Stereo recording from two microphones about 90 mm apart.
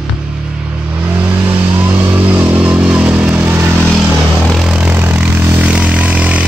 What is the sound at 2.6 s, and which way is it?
Vehicle, 10° right (ahead or behind).